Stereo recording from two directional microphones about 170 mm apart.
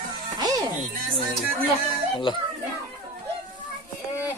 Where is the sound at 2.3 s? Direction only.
30° left (ahead or behind).